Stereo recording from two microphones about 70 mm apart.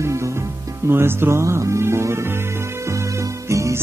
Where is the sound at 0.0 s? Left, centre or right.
Right.